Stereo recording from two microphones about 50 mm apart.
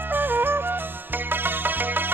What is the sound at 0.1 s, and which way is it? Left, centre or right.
Music, right.